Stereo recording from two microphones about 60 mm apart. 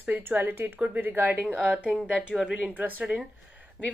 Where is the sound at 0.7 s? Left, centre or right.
Right.